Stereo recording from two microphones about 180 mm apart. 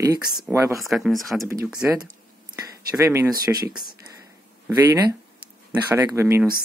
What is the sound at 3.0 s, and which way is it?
Speech, 15° right (ahead or behind).